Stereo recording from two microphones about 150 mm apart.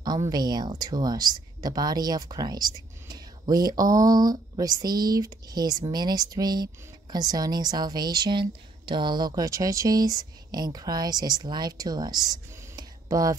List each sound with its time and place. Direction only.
0.3 s speech: 25° right (ahead or behind)